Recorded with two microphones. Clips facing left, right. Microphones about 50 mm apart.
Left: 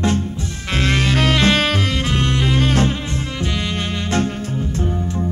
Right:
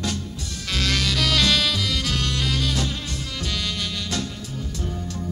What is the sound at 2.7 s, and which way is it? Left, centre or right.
Insect, left.